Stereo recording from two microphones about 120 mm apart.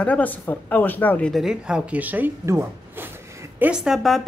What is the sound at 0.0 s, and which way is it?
Speech, 15° left (ahead or behind).